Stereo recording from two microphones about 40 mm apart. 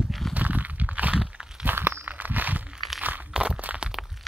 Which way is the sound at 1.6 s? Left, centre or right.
Right.